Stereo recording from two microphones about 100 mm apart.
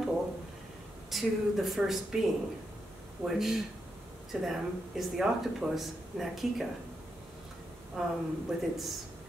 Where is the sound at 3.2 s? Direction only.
5° right (ahead or behind).